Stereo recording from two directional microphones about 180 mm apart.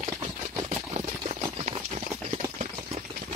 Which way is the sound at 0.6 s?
40° right (ahead or behind).